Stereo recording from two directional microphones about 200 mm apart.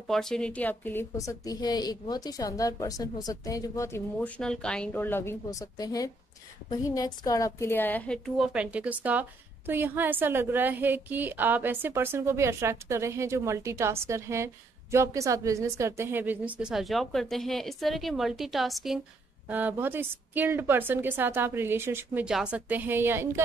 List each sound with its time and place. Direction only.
0.1 s a woman's voice: 5° left (ahead or behind)
8.4 s a woman's voice: 5° right (ahead or behind)